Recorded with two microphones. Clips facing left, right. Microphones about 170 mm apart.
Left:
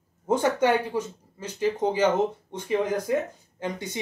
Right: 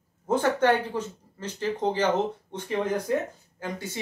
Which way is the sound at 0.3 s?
10° left (ahead or behind).